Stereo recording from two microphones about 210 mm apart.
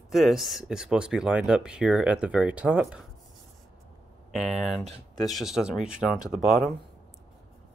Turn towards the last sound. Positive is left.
turn(degrees=0)  # may be behind; listen again after turning